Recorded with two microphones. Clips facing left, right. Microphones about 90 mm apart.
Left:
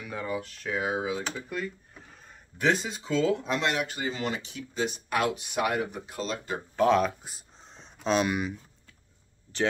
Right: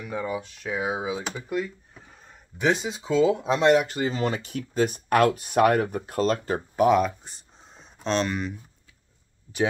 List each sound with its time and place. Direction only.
0.0 s speech: 10° right (ahead or behind)
3.7 s speech: centre (ahead or behind)
4.1 s speech: 40° right (ahead or behind)
6.8 s speech: 10° right (ahead or behind)
7.2 s a sound: centre (ahead or behind)